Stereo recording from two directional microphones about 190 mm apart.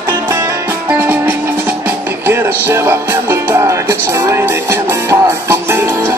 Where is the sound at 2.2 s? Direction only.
15° right (ahead or behind).